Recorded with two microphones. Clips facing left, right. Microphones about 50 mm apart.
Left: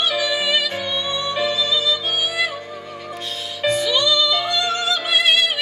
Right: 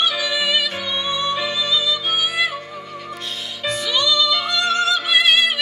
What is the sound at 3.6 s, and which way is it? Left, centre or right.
Music, left.